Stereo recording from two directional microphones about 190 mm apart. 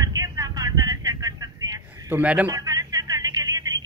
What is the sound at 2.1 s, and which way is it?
Speech, 10° right (ahead or behind).